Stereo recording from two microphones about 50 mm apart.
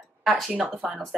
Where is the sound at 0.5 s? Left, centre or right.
Right.